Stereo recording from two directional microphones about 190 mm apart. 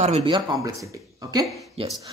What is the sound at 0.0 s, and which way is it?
Speech, 35° right (ahead or behind).